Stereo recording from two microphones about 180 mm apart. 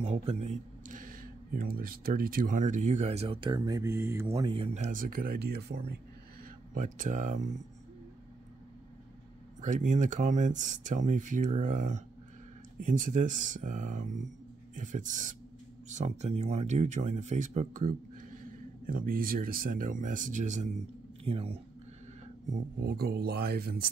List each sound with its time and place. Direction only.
0.0 s speech: 35° right (ahead or behind)
4.7 s speech: 50° right (ahead or behind)
6.7 s speech: 45° right (ahead or behind)
9.6 s speech: 45° right (ahead or behind)
22.5 s speech: 55° right (ahead or behind)